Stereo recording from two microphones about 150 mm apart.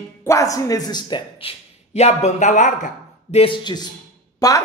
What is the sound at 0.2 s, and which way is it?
A man's voice, 20° left (ahead or behind).